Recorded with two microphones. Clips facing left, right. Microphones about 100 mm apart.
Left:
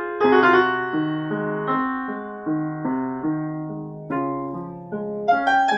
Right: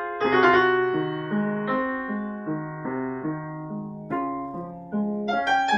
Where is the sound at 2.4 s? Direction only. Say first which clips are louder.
Left 6 dB; 25° left (ahead or behind).